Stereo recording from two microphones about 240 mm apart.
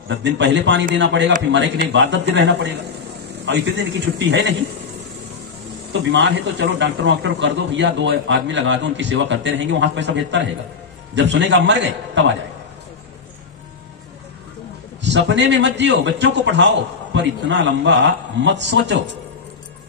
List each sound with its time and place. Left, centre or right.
0.1 s a man's voice: right
6.1 s a man's voice: right
15.0 s a man's voice: right